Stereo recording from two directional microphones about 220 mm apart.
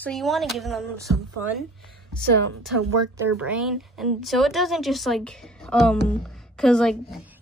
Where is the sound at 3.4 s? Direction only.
5° right (ahead or behind).